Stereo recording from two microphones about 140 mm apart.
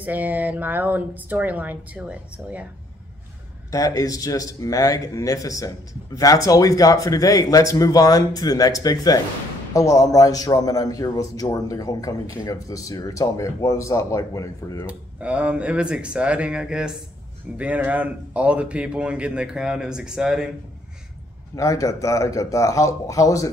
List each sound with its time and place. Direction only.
0.0 s speech: 10° right (ahead or behind)
3.7 s a man's voice: 25° left (ahead or behind)
14.9 s speech: 10° right (ahead or behind)
21.5 s a man's voice: 25° left (ahead or behind)